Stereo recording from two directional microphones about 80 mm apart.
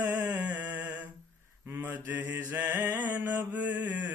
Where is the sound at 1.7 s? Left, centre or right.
Right.